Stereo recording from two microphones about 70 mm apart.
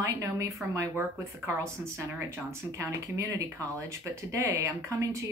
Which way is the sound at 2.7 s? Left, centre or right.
Right.